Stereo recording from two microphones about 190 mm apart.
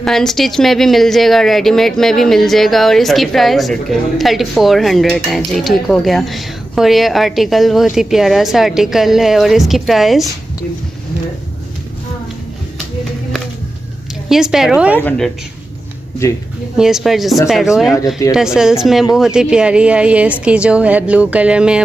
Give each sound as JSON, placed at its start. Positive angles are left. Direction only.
{"t": 0.0, "sound": "speech", "side_deg": 0}
{"t": 14.3, "sound": "speech", "side_deg": 0}
{"t": 15.0, "sound": "speech", "side_deg": 5}
{"t": 16.7, "sound": "speech", "side_deg": -5}
{"t": 17.9, "sound": "speech", "side_deg": 15}
{"t": 18.3, "sound": "speech", "side_deg": -5}